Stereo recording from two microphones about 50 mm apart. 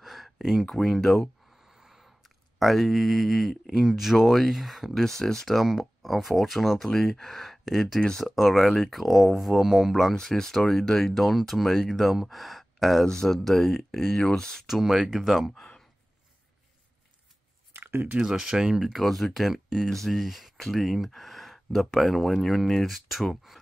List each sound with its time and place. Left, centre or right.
0.0 s a sound: centre
0.7 s speech: centre
1.7 s a sound: centre
2.2 s speech: centre
8.0 s speech: centre
8.4 s speech: centre
10.1 s speech: centre
13.0 s speech: centre
14.7 s speech: centre
17.7 s a sound: right
18.2 s speech: centre